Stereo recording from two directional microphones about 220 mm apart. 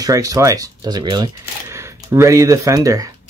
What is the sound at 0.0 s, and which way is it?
Speech, 15° right (ahead or behind).